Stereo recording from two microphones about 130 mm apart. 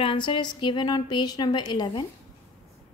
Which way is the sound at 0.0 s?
40° left (ahead or behind).